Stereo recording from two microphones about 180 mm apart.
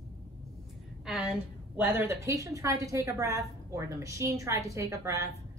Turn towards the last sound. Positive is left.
turn(degrees=-15)  # may be behind; listen again after turning